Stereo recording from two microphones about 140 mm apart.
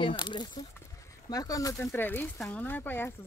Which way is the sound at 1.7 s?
15° left (ahead or behind).